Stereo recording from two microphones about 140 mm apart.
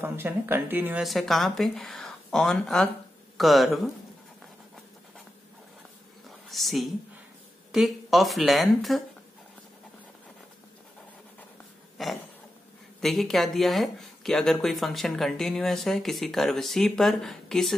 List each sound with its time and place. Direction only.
0.0 s speech: 15° right (ahead or behind)
1.0 s speech: centre (ahead or behind)
6.5 s speech: centre (ahead or behind)
12.0 s speech: centre (ahead or behind)